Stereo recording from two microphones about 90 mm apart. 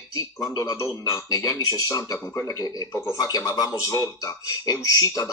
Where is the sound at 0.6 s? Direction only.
40° left (ahead or behind).